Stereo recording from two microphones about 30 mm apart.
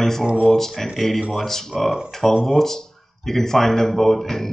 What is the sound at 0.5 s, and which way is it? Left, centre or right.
Speech, centre.